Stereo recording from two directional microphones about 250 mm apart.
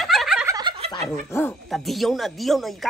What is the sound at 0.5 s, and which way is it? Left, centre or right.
Turkey, right.